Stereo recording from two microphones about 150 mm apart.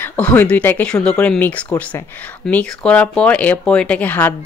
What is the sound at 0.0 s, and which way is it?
Speech, 10° left (ahead or behind).